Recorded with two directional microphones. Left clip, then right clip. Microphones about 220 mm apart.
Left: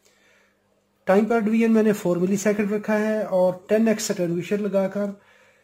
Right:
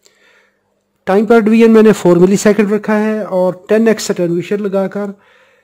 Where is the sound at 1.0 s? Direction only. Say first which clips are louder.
Right 10 dB; 50° right (ahead or behind).